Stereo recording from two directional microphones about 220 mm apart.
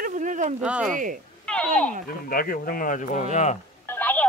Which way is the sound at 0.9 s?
35° right (ahead or behind).